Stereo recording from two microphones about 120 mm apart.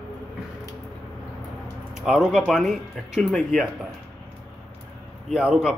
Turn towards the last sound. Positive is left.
turn(degrees=-5)  # may be behind; listen again after turning